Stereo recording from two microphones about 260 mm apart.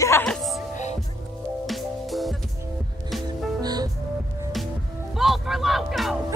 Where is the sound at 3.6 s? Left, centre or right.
Centre.